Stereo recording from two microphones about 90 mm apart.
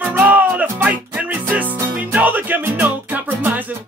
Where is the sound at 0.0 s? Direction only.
20° right (ahead or behind).